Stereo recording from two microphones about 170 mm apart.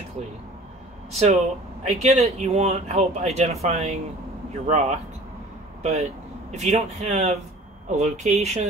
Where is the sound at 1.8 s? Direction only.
40° right (ahead or behind).